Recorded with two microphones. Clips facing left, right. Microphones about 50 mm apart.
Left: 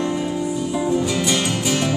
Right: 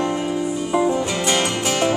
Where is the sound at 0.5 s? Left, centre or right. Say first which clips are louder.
Right 2 dB; right.